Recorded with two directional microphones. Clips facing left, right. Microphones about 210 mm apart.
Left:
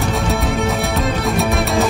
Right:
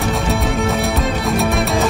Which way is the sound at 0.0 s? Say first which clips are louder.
Even; centre (ahead or behind).